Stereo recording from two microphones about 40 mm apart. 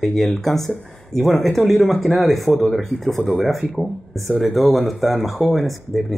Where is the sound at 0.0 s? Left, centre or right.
Centre.